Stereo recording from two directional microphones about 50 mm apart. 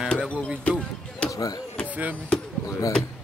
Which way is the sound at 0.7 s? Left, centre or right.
Left.